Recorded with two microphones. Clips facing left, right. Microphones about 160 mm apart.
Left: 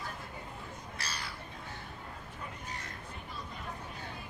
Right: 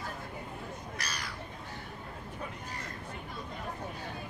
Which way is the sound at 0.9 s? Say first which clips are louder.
Left 1 dB; 30° left (ahead or behind).